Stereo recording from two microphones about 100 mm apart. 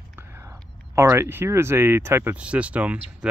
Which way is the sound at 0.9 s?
30° right (ahead or behind).